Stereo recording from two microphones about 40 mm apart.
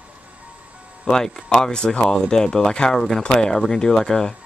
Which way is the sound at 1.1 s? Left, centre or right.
Centre.